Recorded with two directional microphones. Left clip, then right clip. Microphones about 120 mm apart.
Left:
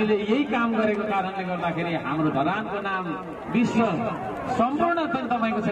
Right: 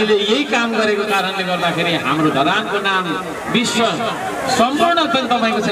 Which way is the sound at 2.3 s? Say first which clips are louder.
Right 9 dB; 25° right (ahead or behind).